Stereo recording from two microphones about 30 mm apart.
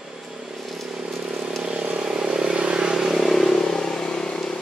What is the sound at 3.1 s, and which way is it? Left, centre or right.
Vehicle, centre.